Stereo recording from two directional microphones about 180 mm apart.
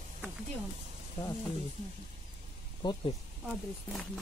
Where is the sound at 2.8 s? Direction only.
25° left (ahead or behind).